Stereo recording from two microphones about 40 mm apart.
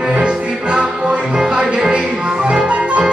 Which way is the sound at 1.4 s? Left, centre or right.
Centre.